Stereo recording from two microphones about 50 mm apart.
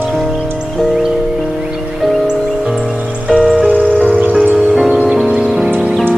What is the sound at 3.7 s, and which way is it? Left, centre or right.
Music, left.